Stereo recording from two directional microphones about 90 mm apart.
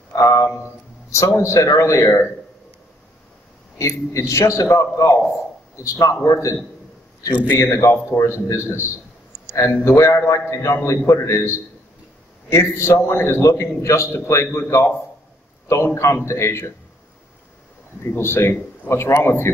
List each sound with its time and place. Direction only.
0.1 s a sound: 35° left (ahead or behind)
0.5 s a man's voice: 30° left (ahead or behind)
3.7 s a man's voice: 35° left (ahead or behind)
7.4 s a man's voice: 25° left (ahead or behind)
9.9 s a man's voice: 30° left (ahead or behind)
18.0 s a man's voice: 25° left (ahead or behind)